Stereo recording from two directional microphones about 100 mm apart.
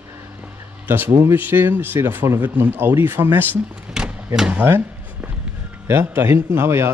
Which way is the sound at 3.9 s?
5° right (ahead or behind).